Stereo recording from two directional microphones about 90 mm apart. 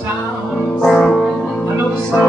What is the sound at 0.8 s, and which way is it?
Music, 10° left (ahead or behind).